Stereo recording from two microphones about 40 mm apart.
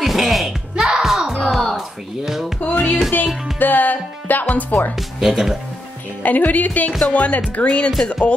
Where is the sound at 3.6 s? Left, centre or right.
Left.